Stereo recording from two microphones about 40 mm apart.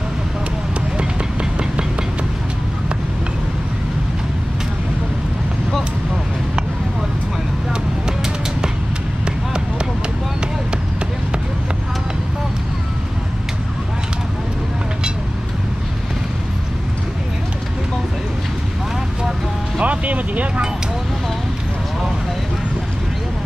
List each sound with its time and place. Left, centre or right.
0.7 s run: right
9.2 s a sound: right
19.8 s vehicle: right